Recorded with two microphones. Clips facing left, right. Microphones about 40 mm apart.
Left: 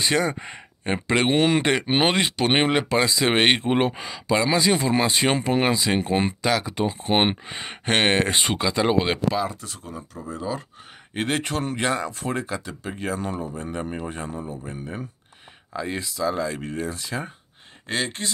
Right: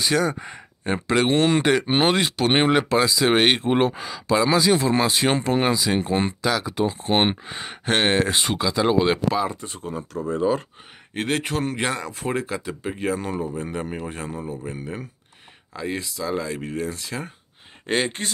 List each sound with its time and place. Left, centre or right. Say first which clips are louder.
0.2 s speech: right 1 dB; centre
3.0 s speech: right 2 dB; centre
7.8 s speech: even; left
9.5 s speech: right 5 dB; right
11.1 s speech: right 1 dB; centre
12.1 s speech: right 2 dB; centre
17.9 s speech: right 4 dB; right